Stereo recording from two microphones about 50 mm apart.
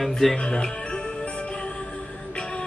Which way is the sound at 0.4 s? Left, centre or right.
Centre.